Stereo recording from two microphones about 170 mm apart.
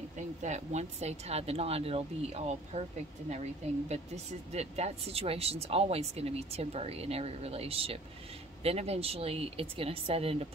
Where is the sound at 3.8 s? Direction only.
40° right (ahead or behind).